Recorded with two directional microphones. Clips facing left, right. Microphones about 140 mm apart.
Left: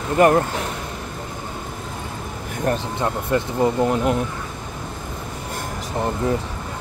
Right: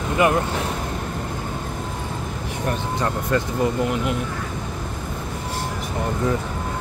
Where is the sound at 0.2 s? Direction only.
40° left (ahead or behind).